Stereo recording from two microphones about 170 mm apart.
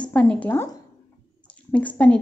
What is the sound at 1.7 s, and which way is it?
Speech, 10° left (ahead or behind).